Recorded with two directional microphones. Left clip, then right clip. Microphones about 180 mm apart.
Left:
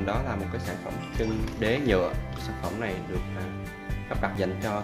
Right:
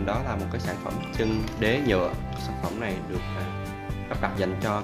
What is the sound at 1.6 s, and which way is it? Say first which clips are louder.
Speech: right 1 dB; 10° right (ahead or behind).